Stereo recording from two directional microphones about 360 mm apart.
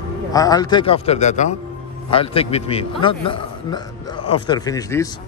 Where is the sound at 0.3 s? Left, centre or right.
Centre.